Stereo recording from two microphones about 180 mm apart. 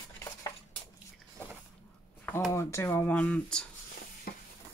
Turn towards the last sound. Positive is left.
turn(degrees=60)  # may be behind; listen again after turning